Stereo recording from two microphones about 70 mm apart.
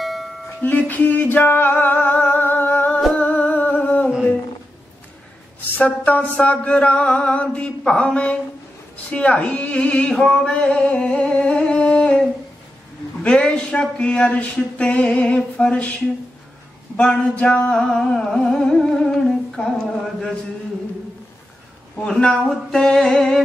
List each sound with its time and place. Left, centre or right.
0.0 s music: centre
0.6 s music: left
3.2 s humming: left
5.8 s music: centre
16.9 s music: centre
21.9 s music: centre